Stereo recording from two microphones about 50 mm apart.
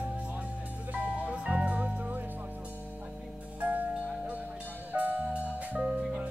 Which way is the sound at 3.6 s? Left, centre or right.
Right.